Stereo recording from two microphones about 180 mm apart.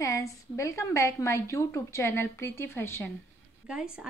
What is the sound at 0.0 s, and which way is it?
A woman's voice, 15° left (ahead or behind).